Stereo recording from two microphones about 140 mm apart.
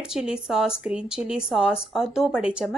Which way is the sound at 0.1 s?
5° right (ahead or behind).